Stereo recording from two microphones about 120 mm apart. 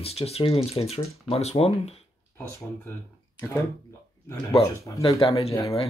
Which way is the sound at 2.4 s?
20° left (ahead or behind).